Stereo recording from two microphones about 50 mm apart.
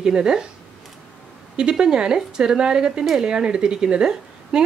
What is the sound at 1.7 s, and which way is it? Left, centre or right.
Speech, centre.